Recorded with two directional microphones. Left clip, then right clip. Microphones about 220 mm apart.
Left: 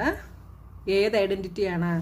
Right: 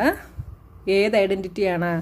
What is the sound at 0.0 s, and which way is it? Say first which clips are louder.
A woman's voice: right 6 dB; 35° right (ahead or behind).